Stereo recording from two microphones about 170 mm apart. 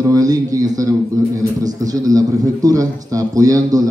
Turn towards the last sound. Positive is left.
turn(degrees=-20)  # may be behind; listen again after turning